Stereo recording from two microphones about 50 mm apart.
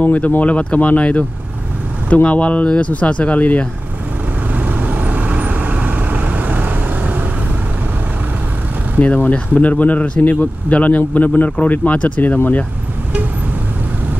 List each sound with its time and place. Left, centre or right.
0.0 s speech: left
2.2 s speech: left
4.6 s vehicle: right
9.0 s speech: left